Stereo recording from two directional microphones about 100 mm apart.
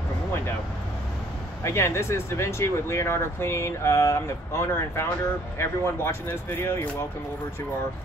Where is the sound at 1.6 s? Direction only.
30° left (ahead or behind).